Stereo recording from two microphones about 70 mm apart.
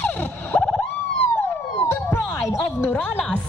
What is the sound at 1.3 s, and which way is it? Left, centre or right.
Police car, left.